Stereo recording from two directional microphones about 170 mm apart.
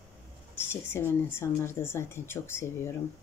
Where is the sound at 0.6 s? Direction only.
15° left (ahead or behind).